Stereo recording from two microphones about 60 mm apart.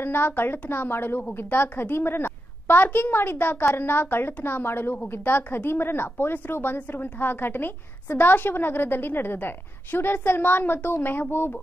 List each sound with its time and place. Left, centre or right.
0.0 s a woman's voice: left